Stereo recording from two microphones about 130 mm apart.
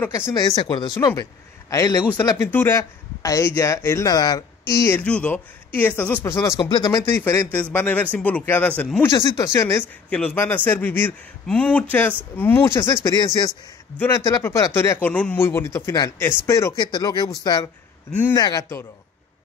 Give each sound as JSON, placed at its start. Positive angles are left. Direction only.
{"t": 0.3, "sound": "speech", "side_deg": 35}
{"t": 5.0, "sound": "a man's voice", "side_deg": 10}
{"t": 6.6, "sound": "a man's voice", "side_deg": 35}
{"t": 9.5, "sound": "speech", "side_deg": 20}
{"t": 10.0, "sound": "a man's voice", "side_deg": 5}